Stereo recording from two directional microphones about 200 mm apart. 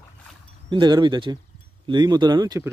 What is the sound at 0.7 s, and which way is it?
Speech, 20° right (ahead or behind).